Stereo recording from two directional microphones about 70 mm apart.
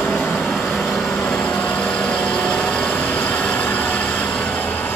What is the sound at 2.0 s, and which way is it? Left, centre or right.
Vehicle, centre.